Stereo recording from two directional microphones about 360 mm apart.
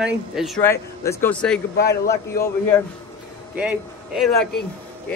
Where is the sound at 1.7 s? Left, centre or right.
Left.